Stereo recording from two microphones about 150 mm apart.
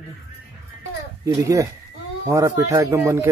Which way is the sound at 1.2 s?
20° right (ahead or behind).